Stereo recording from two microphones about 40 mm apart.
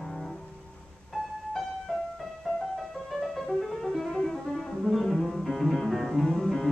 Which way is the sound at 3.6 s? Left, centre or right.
Centre.